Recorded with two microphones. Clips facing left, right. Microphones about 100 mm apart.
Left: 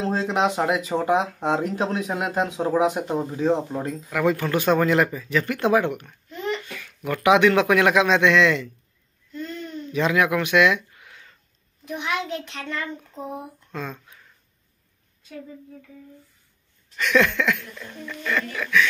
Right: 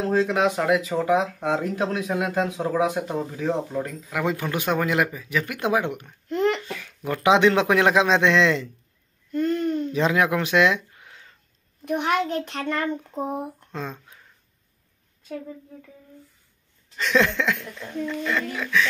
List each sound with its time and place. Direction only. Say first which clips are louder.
0.0 s speech: right 1 dB; 25° left (ahead or behind)
4.1 s speech: left 4 dB; 15° right (ahead or behind)
6.2 s a sound: right 6 dB; 60° right (ahead or behind)
6.6 s speech: right 1 dB; 25° right (ahead or behind)
9.3 s a sound: right 10 dB; 55° right (ahead or behind)
9.9 s speech: left 3 dB; 30° right (ahead or behind)
11.8 s a child's voice: right 5 dB; 50° right (ahead or behind)
13.7 s speech: even; 25° right (ahead or behind)
16.9 s speech: left 1 dB; 25° right (ahead or behind)